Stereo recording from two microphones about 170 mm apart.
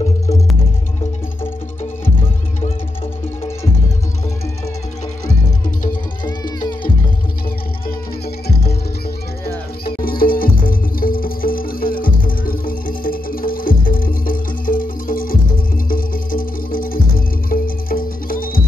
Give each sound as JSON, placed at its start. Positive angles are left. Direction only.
{"t": 6.2, "sound": "music", "side_deg": 25}
{"t": 9.8, "sound": "music", "side_deg": 60}